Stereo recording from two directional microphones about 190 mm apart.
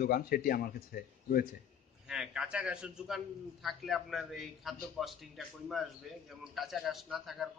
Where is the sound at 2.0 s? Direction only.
5° right (ahead or behind).